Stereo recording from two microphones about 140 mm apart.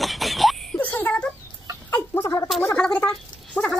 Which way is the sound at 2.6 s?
10° left (ahead or behind).